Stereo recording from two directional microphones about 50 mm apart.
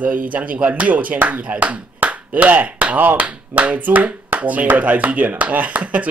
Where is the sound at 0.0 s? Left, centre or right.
Right.